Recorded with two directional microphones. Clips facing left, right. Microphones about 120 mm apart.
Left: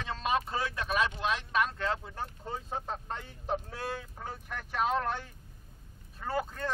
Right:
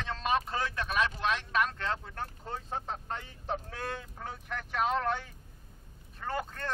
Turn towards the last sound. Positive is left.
turn(degrees=5)  # may be behind; listen again after turning